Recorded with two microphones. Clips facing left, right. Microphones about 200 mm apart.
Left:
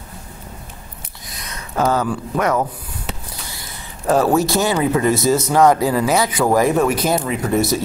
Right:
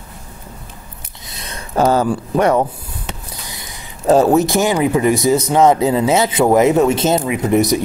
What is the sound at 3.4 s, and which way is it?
Speech, 20° right (ahead or behind).